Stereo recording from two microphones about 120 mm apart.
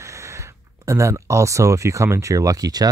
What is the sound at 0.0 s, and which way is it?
Speech, 25° right (ahead or behind).